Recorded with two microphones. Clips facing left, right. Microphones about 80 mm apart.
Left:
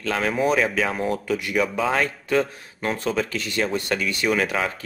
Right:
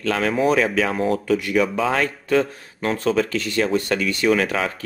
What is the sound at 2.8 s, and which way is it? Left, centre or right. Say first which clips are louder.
Speech: right 4 dB; centre.